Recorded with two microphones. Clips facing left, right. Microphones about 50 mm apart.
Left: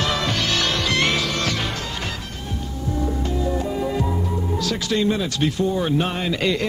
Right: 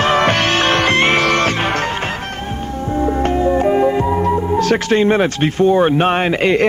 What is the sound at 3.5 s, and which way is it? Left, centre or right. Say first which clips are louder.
Music: right 12 dB; right.